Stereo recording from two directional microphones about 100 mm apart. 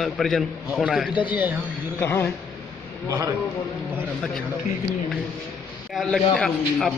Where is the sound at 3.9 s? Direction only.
5° left (ahead or behind).